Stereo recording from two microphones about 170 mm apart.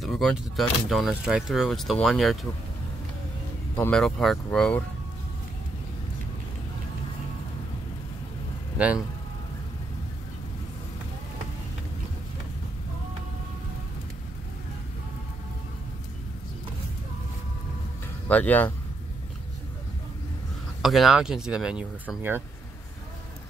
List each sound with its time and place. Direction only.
0.0 s speech: centre (ahead or behind)
3.7 s speech: 5° left (ahead or behind)
8.7 s speech: 10° right (ahead or behind)
18.3 s speech: 10° left (ahead or behind)
20.8 s speech: centre (ahead or behind)